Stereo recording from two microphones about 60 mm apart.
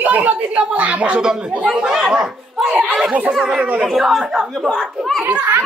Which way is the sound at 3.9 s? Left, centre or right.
Centre.